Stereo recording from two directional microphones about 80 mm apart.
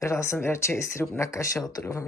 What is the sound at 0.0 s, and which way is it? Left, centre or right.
Speech, left.